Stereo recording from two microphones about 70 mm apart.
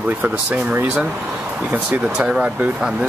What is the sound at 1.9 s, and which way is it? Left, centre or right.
Speech, centre.